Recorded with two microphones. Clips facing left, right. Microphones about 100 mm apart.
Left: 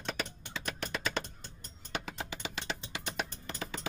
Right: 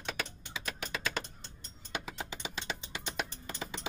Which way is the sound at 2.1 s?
5° left (ahead or behind).